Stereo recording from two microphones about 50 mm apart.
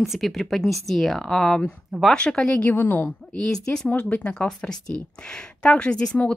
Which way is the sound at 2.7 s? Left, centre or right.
Left.